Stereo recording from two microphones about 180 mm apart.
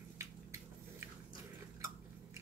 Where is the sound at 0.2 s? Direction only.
15° right (ahead or behind).